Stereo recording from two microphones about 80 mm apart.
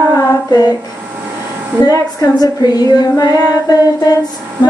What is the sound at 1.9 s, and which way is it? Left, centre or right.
Female singing, left.